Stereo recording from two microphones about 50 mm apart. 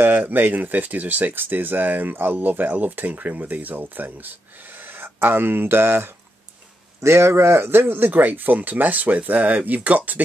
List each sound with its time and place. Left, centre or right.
0.1 s speech: right
7.0 s speech: right